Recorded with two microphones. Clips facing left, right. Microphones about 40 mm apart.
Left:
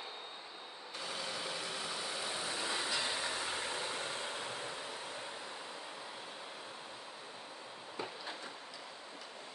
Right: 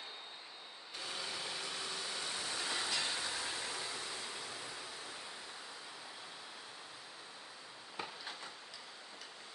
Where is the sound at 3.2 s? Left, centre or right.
Left.